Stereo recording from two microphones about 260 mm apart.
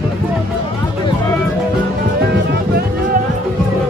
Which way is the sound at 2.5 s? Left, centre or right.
Right.